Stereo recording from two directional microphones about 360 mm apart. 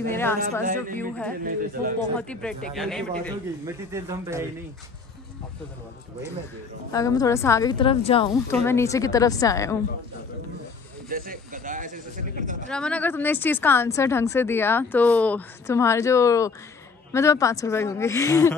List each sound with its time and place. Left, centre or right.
0.1 s a woman's voice: centre
0.4 s speech: right
0.9 s a man's voice: centre
6.9 s a woman's voice: centre
11.1 s speech: right
12.6 s a woman's voice: centre